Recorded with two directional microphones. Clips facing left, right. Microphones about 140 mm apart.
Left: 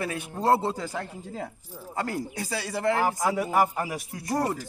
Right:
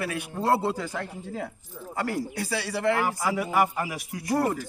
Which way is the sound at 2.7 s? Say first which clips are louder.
Left 1 dB; 25° left (ahead or behind).